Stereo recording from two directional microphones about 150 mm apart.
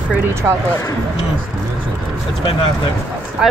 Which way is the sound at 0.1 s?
15° right (ahead or behind).